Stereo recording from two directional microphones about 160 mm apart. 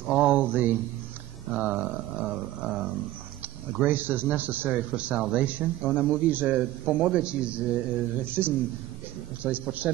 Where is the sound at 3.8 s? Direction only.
10° right (ahead or behind).